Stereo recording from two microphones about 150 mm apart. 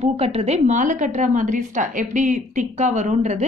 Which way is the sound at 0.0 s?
40° right (ahead or behind).